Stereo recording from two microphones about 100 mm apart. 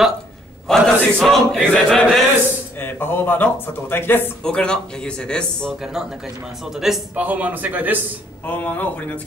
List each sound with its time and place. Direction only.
0.7 s chant: 5° left (ahead or behind)
2.8 s speech: 20° left (ahead or behind)
4.4 s speech: 10° left (ahead or behind)
6.7 s chant: 5° right (ahead or behind)
7.2 s a man's voice: 15° right (ahead or behind)
8.5 s speech: 15° left (ahead or behind)